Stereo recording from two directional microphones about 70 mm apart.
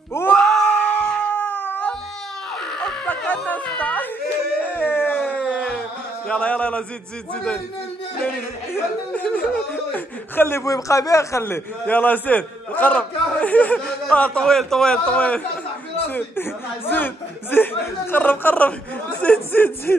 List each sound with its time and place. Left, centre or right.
0.4 s cat: centre
2.8 s music: centre
4.6 s a sound: left
5.4 s a sound: centre
6.2 s a man's voice: centre
8.7 s a man's voice: left
10.3 s speech: left
10.6 s a man's voice: left
11.8 s a man's voice: left
13.7 s a sound: centre
14.1 s a man's voice: centre
14.4 s a man's voice: centre
16.1 s a man's voice: left